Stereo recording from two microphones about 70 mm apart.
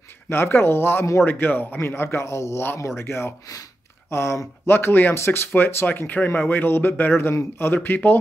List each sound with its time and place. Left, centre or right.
0.3 s speech: left